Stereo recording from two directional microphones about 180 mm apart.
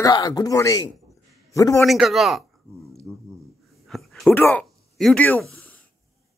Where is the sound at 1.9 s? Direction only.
Centre (ahead or behind).